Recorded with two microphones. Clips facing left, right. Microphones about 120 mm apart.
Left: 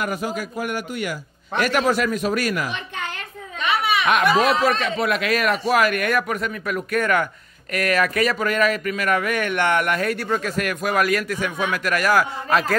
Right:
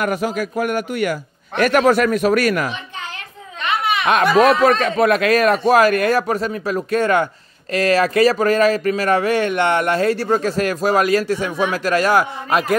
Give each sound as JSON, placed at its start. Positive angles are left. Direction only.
{"t": 0.0, "sound": "speech", "side_deg": -60}
{"t": 4.0, "sound": "speech", "side_deg": -35}
{"t": 4.4, "sound": "speech", "side_deg": -50}